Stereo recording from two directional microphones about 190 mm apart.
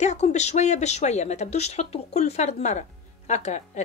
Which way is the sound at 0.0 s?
35° left (ahead or behind).